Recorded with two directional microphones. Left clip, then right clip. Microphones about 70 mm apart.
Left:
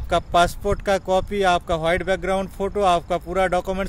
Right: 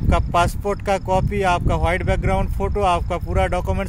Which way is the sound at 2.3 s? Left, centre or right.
Left.